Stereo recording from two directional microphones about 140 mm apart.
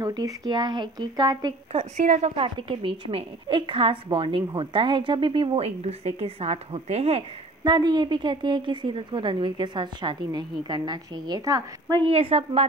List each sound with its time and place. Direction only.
0.0 s a woman's voice: 25° right (ahead or behind)
1.7 s a woman's voice: 45° right (ahead or behind)
7.6 s a woman's voice: 30° right (ahead or behind)
12.1 s a woman's voice: 45° right (ahead or behind)